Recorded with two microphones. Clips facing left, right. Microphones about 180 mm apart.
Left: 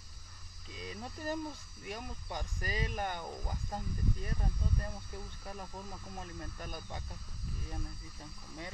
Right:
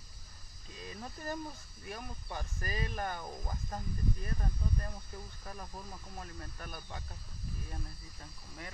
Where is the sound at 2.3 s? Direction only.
15° left (ahead or behind).